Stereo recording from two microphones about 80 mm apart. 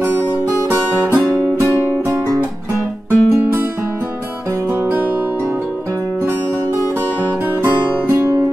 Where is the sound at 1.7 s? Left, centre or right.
Left.